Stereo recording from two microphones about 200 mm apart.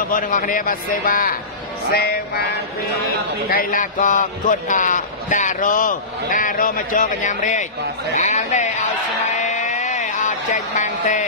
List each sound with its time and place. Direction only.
0.1 s a man's voice: 45° left (ahead or behind)
3.4 s a man's voice: 45° left (ahead or behind)
9.4 s a sound: 35° left (ahead or behind)